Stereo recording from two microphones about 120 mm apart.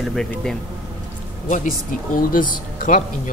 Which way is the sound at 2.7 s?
90° left.